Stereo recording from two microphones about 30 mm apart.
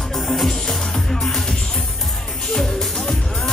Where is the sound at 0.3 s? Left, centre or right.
Centre.